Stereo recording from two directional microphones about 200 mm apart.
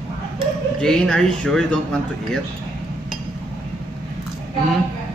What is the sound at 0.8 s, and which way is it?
Speech, 5° left (ahead or behind).